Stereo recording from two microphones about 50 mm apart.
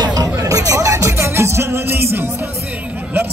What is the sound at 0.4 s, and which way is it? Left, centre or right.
Music, right.